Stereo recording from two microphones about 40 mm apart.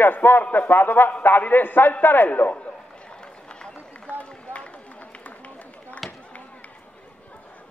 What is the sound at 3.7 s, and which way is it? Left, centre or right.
Run, left.